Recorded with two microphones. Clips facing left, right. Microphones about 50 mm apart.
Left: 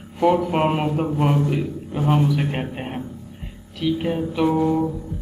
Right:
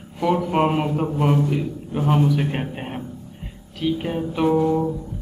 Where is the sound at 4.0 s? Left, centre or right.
Centre.